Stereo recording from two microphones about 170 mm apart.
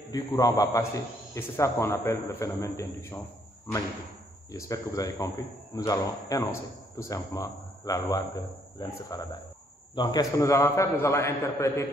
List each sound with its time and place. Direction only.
0.1 s a man's voice: 20° left (ahead or behind)
4.5 s a man's voice: 20° left (ahead or behind)